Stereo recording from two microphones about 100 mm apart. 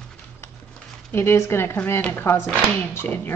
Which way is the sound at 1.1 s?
25° left (ahead or behind).